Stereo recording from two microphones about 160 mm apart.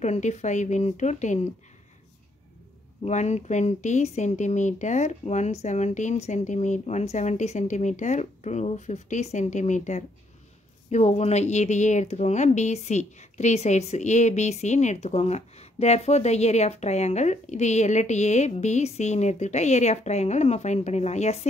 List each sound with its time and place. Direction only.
0.0 s speech: 45° left (ahead or behind)
3.0 s speech: 45° left (ahead or behind)